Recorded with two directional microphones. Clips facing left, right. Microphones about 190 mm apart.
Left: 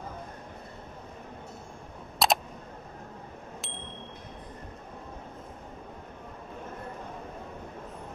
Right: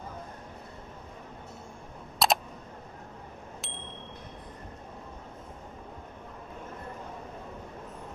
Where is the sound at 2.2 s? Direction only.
Centre (ahead or behind).